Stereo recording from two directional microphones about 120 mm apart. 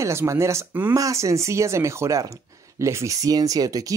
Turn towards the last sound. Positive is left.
turn(degrees=-30)  # may be behind; listen again after turning